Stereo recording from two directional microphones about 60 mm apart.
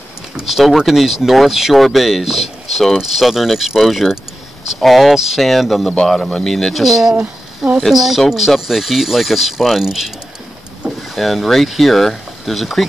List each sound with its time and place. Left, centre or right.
0.4 s speech: centre